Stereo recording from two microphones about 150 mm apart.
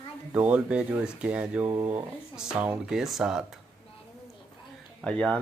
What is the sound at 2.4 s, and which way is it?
Speech, 5° right (ahead or behind).